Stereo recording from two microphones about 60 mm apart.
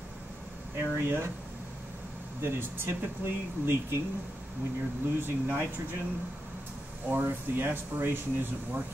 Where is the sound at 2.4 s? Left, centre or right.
Right.